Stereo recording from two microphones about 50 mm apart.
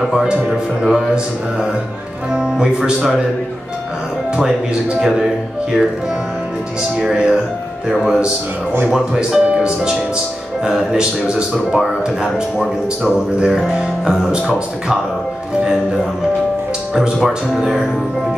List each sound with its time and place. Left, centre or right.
0.0 s speech: centre
2.3 s speech: centre
5.0 s speech: centre
7.1 s speech: centre
7.9 s speech: centre
9.5 s music: right
10.6 s a man's voice: centre
11.7 s speech: centre
12.5 s speech: centre
16.9 s speech: centre